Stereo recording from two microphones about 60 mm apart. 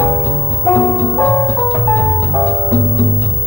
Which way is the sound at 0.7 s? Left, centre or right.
Left.